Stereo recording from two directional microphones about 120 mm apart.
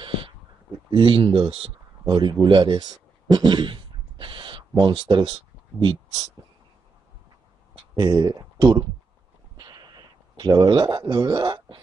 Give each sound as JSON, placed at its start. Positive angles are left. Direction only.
{"t": 0.8, "sound": "speech", "side_deg": -45}
{"t": 7.9, "sound": "speech", "side_deg": -30}
{"t": 9.6, "sound": "a sound", "side_deg": -35}